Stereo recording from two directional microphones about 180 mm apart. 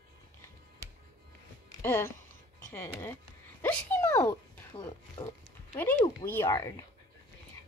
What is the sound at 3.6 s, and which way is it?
Dog, 10° left (ahead or behind).